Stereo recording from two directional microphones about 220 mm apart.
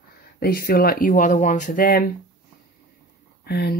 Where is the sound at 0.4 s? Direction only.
45° left (ahead or behind).